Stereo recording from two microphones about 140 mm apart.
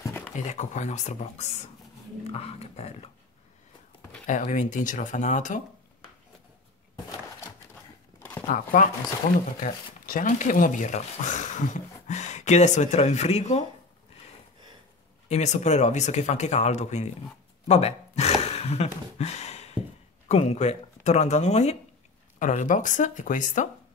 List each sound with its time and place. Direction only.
0.5 s speech: 60° left (ahead or behind)
4.3 s speech: 65° left (ahead or behind)
8.5 s speech: 70° left (ahead or behind); by 13.7 s 50° left (ahead or behind)
15.2 s speech: 55° left (ahead or behind)
17.6 s gasp: 50° left (ahead or behind)
20.2 s speech: 55° left (ahead or behind)